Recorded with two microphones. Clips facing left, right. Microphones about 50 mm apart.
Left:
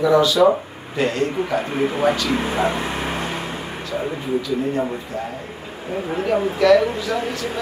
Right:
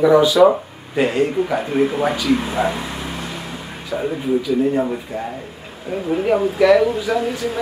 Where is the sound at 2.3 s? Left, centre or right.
Left.